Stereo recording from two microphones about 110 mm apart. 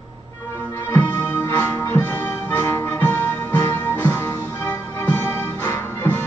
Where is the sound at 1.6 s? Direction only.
20° left (ahead or behind).